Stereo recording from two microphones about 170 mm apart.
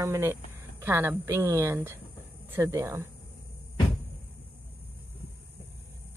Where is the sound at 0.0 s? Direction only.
15° right (ahead or behind).